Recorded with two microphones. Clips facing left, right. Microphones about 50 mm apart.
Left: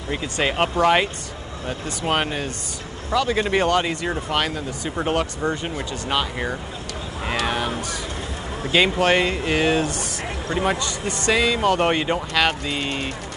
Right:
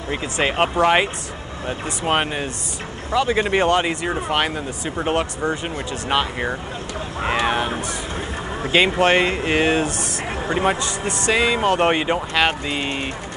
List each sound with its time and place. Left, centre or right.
0.1 s speech: centre
4.8 s speech: centre